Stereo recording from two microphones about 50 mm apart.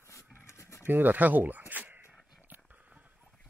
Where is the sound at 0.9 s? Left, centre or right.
Right.